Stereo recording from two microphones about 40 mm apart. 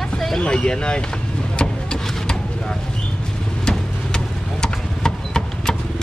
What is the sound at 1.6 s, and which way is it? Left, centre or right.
Vehicle, centre.